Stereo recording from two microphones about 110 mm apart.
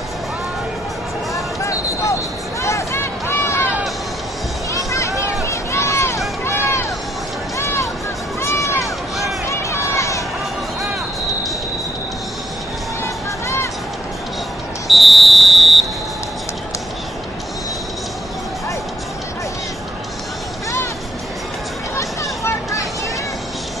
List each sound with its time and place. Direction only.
1.3 s basketball bounce: 30° left (ahead or behind)
2.6 s a sound: 25° left (ahead or behind)
4.7 s run: 30° left (ahead or behind)
7.5 s vehicle: 25° left (ahead or behind)
8.4 s run: 25° left (ahead or behind)
13.0 s music: 25° left (ahead or behind)
14.9 s whistle: centre (ahead or behind)
21.9 s vehicle: 25° left (ahead or behind)